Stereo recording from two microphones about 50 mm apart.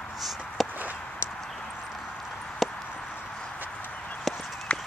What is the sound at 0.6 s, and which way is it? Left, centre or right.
Walk, centre.